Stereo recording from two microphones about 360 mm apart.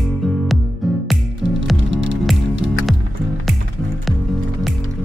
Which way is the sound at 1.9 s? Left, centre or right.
Right.